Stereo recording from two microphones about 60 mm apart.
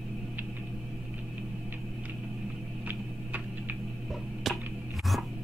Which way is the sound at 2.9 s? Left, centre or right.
Right.